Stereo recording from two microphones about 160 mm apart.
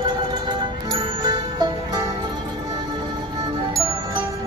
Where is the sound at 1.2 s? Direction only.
25° right (ahead or behind).